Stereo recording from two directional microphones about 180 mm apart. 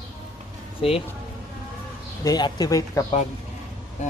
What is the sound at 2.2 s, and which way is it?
Speech, 20° left (ahead or behind).